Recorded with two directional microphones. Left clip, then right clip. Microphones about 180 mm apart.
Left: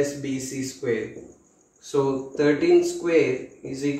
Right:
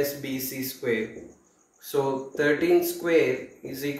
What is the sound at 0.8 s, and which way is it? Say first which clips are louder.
Speech: left 1 dB; 20° left (ahead or behind).